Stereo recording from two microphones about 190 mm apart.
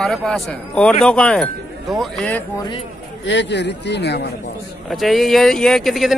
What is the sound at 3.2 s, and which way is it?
Speech, 65° left (ahead or behind).